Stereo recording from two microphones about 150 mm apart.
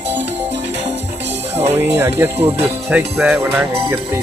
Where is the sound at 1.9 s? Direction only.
20° right (ahead or behind).